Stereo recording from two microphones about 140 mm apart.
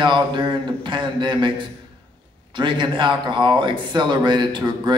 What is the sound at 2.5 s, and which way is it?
Speech, 35° right (ahead or behind).